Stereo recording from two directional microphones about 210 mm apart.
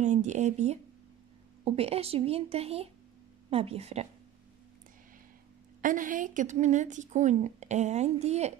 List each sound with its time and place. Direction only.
0.0 s a woman's voice: 35° right (ahead or behind)
5.8 s a woman's voice: 40° right (ahead or behind)